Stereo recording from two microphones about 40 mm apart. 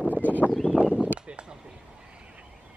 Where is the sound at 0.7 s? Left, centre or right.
Left.